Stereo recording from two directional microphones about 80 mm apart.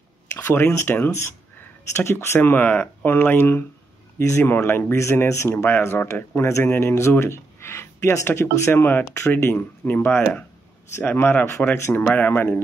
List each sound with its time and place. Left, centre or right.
0.6 s speech: left
8.7 s speech: left
9.0 s speech: left
9.3 s speech: left
11.9 s speech: centre